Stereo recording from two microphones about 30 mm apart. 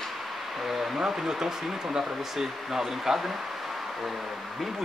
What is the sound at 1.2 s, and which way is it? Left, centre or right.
Speech, centre.